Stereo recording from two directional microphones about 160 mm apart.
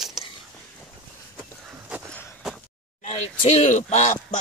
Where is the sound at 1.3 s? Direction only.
5° right (ahead or behind).